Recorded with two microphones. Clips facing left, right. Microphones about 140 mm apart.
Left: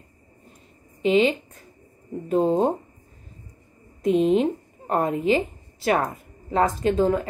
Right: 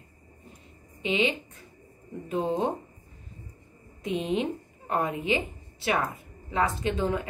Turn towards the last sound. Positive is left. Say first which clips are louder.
# left 7 dB
turn(degrees=40)  # may be behind; listen again after turning